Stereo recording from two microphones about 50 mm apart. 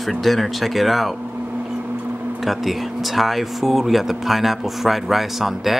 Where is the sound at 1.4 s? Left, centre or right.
Right.